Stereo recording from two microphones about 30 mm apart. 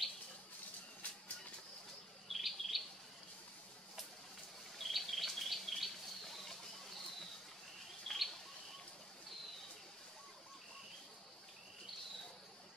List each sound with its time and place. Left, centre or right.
1.0 s a sound: left
2.2 s bird: centre
4.7 s chirp: centre
8.1 s bird: centre